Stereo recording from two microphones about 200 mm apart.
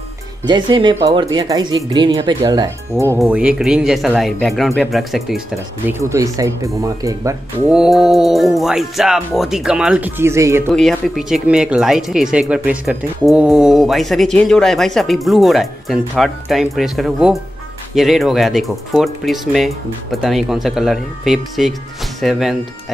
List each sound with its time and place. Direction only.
0.4 s speech: 20° right (ahead or behind); by 5.4 s centre (ahead or behind)
5.9 s speech: 15° right (ahead or behind)
7.7 s speech: 5° right (ahead or behind)
10.7 s speech: centre (ahead or behind)